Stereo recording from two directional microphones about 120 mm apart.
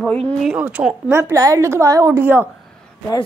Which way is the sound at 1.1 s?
25° right (ahead or behind).